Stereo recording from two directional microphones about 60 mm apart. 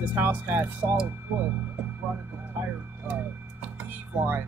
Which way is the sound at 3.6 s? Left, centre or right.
Right.